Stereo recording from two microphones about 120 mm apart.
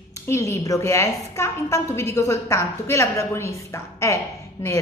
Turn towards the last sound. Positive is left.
turn(degrees=25)  # may be behind; listen again after turning